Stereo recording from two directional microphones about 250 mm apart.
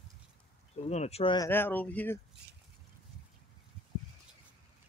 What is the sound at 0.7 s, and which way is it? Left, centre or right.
Speech, left.